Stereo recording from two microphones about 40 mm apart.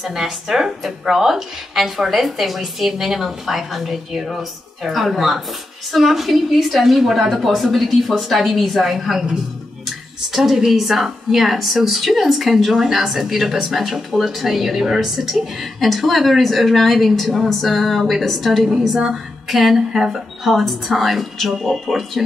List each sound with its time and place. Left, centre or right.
0.1 s a woman's voice: centre
18.7 s speech: centre
19.4 s a woman's voice: centre